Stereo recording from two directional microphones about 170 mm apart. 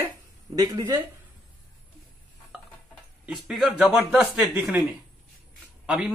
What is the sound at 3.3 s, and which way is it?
Speech, centre (ahead or behind).